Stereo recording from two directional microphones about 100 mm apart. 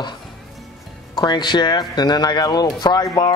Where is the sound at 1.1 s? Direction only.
45° left (ahead or behind).